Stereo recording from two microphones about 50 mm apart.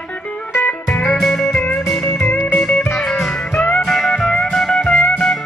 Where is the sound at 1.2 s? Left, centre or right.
Centre.